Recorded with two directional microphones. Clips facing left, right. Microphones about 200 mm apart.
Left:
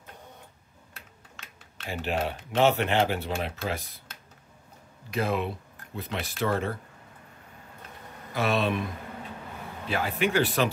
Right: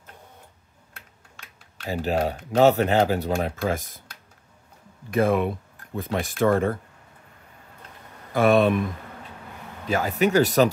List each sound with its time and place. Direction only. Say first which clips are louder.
1.9 s speech: right 5 dB; 40° right (ahead or behind)
5.1 s speech: right 7 dB; 50° right (ahead or behind)
8.3 s speech: right 8 dB; 50° right (ahead or behind)
9.8 s speech: right 5 dB; 40° right (ahead or behind)